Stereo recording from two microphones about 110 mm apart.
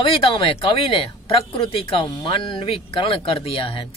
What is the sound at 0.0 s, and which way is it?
Speech, 55° left (ahead or behind).